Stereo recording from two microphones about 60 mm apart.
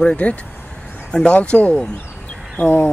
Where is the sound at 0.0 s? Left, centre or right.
Centre.